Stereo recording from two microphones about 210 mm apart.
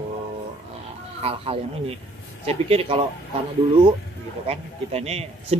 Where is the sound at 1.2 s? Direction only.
25° right (ahead or behind).